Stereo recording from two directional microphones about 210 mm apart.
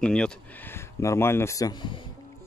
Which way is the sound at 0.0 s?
5° left (ahead or behind).